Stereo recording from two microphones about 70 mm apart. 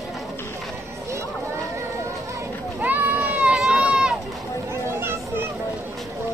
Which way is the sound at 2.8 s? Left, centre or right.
Right.